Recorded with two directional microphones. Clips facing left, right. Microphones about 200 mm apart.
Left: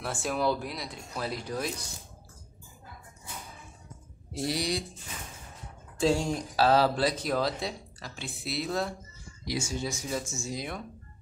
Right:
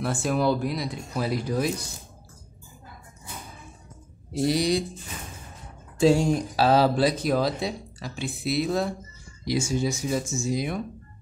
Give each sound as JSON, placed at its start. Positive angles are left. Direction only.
{"t": 0.0, "sound": "speech", "side_deg": 0}
{"t": 4.5, "sound": "speech", "side_deg": -20}
{"t": 5.9, "sound": "speech", "side_deg": -10}